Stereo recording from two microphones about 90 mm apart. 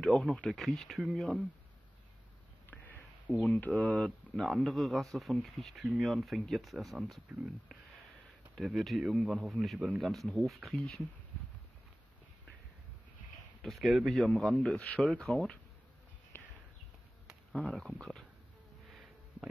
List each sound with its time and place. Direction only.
0.0 s speech: 5° left (ahead or behind)
3.3 s speech: 15° left (ahead or behind); by 7.2 s centre (ahead or behind)
8.5 s speech: centre (ahead or behind)
13.6 s speech: centre (ahead or behind)
16.3 s a sound: 20° left (ahead or behind)
17.6 s speech: centre (ahead or behind)
18.9 s sniff: centre (ahead or behind)